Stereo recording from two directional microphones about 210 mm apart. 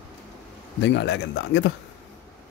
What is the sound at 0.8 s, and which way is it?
Speech, 55° left (ahead or behind).